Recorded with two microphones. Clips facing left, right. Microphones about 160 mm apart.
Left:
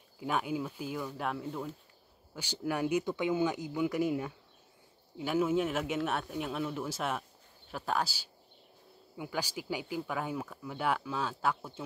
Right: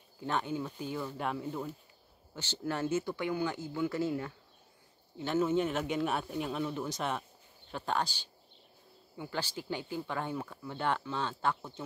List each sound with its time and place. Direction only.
0.2 s speech: 10° left (ahead or behind)
2.3 s speech: 10° left (ahead or behind)